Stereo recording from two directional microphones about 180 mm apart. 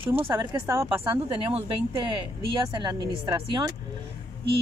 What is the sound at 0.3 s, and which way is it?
Speech, 25° right (ahead or behind).